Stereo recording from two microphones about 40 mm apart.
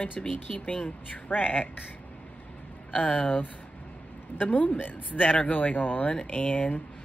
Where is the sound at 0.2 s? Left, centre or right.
Left.